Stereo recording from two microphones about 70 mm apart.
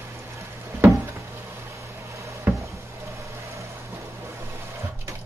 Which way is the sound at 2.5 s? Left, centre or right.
Right.